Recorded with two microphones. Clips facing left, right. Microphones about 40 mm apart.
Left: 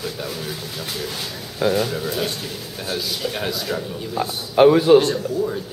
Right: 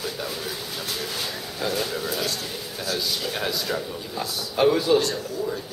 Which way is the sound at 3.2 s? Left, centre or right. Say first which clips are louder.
Left 2 dB; centre.